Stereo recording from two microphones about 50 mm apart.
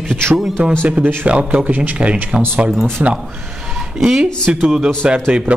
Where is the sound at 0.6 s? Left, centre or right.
Right.